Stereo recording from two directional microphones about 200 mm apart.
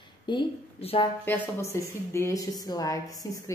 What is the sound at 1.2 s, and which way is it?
A woman's voice, 10° left (ahead or behind).